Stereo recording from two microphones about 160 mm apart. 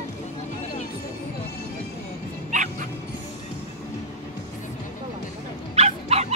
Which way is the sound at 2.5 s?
50° right (ahead or behind).